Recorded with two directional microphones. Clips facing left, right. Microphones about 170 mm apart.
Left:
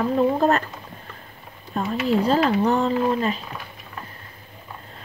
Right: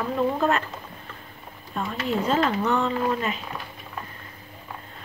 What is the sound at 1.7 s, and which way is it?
Speech, 40° left (ahead or behind).